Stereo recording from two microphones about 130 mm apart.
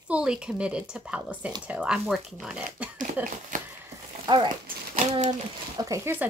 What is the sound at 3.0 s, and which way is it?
Speech, 90° right.